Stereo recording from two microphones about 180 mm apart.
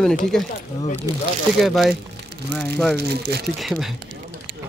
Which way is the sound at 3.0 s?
65° right (ahead or behind).